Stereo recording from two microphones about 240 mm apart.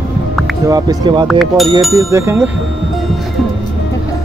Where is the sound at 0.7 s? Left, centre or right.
Centre.